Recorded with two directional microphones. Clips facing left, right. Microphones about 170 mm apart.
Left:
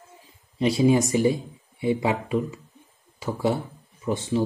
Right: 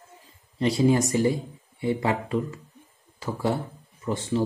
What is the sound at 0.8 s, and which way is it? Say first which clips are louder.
Speech: left 2 dB; 15° left (ahead or behind).